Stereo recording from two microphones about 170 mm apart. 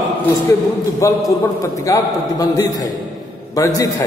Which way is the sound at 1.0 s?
15° left (ahead or behind).